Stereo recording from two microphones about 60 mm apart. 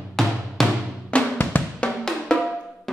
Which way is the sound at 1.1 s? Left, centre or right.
Left.